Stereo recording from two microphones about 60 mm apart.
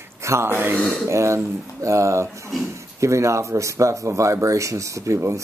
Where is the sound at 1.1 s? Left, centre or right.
Right.